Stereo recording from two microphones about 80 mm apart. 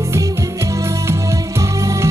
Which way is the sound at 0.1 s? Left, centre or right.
Right.